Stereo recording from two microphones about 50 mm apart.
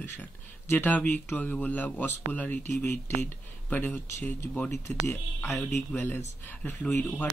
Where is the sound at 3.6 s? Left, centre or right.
Left.